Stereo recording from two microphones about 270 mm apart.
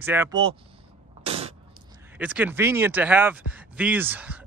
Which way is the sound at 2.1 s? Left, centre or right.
Centre.